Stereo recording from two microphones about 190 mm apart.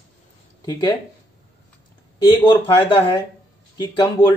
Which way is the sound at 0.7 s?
20° left (ahead or behind).